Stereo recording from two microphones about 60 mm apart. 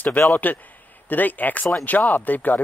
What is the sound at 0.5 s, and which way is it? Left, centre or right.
Speech, left.